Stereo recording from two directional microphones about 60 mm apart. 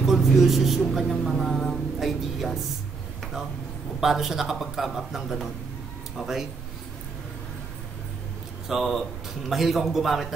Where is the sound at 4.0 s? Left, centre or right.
Centre.